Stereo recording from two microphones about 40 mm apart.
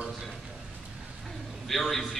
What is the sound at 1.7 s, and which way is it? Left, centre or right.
Speech, centre.